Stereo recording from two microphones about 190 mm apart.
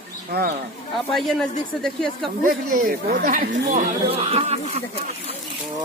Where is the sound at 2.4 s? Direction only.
45° right (ahead or behind).